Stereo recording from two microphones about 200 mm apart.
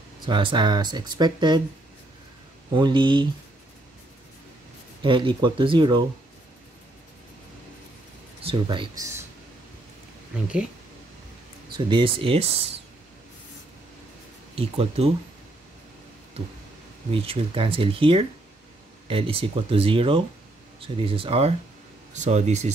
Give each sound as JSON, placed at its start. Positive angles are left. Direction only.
{"t": 0.2, "sound": "speech", "side_deg": -25}
{"t": 2.7, "sound": "speech", "side_deg": -25}
{"t": 5.0, "sound": "speech", "side_deg": -25}
{"t": 8.4, "sound": "speech", "side_deg": -25}
{"t": 10.3, "sound": "speech", "side_deg": -5}
{"t": 11.7, "sound": "speech", "side_deg": -25}
{"t": 14.5, "sound": "speech", "side_deg": -30}
{"t": 17.1, "sound": "speech", "side_deg": -25}